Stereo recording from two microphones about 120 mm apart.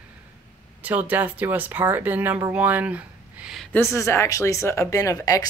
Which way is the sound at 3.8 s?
25° left (ahead or behind).